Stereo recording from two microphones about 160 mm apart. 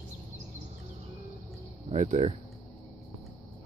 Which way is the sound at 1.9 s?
45° right (ahead or behind).